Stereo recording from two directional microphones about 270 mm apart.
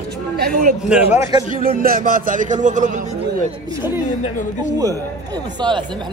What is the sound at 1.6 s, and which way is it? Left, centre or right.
A man's voice, right.